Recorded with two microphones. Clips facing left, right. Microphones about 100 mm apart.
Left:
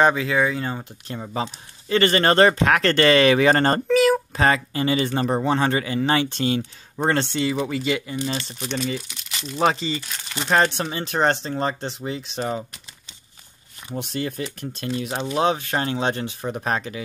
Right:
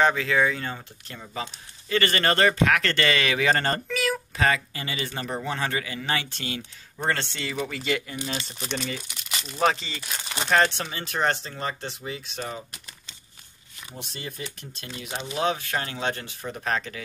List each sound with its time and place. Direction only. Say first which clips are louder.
0.0 s speech: left 3 dB; 15° left (ahead or behind)
0.7 s speech: left 9 dB; 30° left (ahead or behind)
7.2 s speech: left 8 dB; 20° left (ahead or behind)
7.7 s speech: left 4 dB; 5° left (ahead or behind)
9.6 s speech: left 3 dB; 5° left (ahead or behind)
10.5 s speech: left 3 dB; 25° left (ahead or behind)
13.9 s speech: left 11 dB; 65° left (ahead or behind)
14.4 s speech: left 9 dB; 45° left (ahead or behind)
15.3 s speech: left 4 dB; 30° left (ahead or behind)